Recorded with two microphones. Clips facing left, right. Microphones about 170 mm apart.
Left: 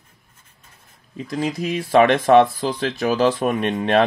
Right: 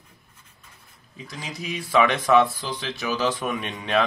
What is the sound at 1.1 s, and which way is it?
Speech, 55° left (ahead or behind).